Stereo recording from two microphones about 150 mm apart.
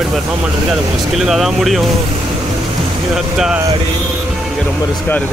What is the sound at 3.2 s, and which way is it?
Speech, 5° right (ahead or behind).